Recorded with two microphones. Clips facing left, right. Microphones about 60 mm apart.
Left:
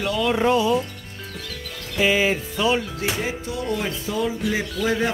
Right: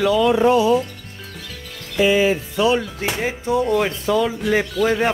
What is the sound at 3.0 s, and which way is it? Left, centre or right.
Music, right.